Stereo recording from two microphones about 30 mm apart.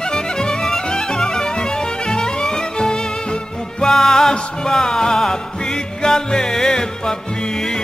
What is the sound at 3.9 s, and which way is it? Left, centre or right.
Music, centre.